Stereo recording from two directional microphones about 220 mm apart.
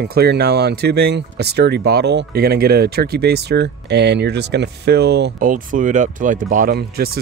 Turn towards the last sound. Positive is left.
turn(degrees=-45)  # may be behind; listen again after turning